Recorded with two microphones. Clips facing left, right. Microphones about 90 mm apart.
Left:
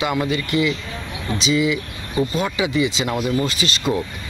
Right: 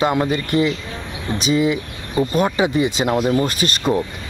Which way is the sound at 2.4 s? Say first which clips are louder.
Right 5 dB; 50° right (ahead or behind).